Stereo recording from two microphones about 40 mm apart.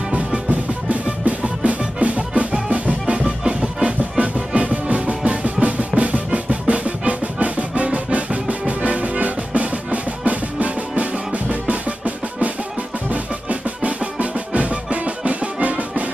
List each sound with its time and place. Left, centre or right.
0.1 s music: right